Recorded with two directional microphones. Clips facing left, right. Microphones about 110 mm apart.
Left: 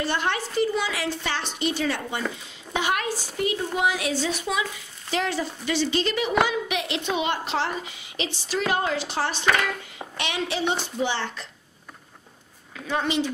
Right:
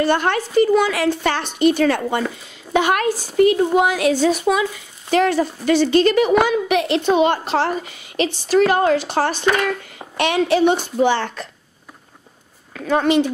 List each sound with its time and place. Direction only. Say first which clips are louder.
0.0 s a woman's voice: right 8 dB; 50° right (ahead or behind)
12.7 s a woman's voice: right 9 dB; 55° right (ahead or behind)